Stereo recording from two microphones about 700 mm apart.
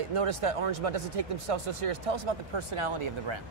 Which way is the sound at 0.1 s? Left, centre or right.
Right.